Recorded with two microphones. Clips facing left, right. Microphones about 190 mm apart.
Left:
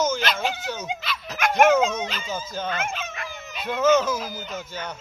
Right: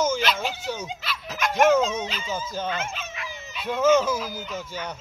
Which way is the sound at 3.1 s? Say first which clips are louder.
Left 2 dB; 55° left (ahead or behind).